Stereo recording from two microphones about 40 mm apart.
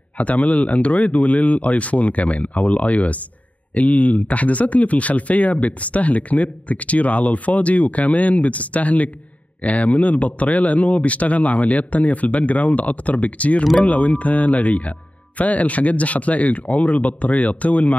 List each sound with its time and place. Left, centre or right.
0.2 s speech: left